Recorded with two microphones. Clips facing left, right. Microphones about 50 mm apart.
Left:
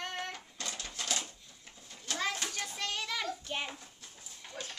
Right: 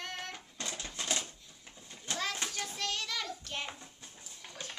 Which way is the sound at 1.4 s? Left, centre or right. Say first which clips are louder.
Right 1 dB; centre.